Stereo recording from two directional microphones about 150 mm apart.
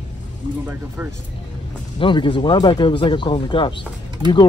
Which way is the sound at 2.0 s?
35° left (ahead or behind).